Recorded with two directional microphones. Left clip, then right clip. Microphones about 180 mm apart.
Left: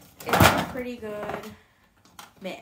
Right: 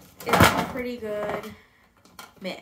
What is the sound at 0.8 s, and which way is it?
Speech, 15° right (ahead or behind).